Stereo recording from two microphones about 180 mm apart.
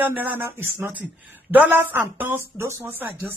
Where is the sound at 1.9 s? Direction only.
15° right (ahead or behind).